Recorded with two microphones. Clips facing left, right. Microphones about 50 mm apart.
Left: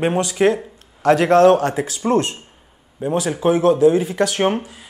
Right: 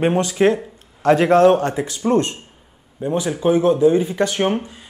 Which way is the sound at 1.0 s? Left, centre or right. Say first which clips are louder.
Even; centre.